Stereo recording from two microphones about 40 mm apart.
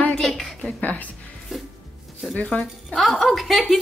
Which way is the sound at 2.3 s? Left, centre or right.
Left.